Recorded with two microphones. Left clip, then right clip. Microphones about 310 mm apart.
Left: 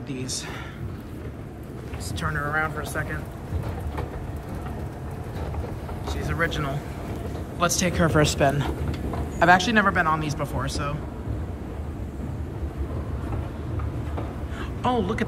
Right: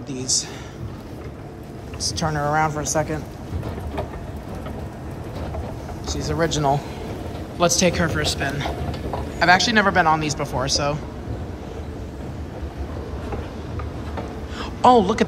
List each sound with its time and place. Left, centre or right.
2.1 s speech: centre
6.2 s speech: centre
7.5 s speech: centre
8.2 s a woman's voice: centre
14.6 s a sound: centre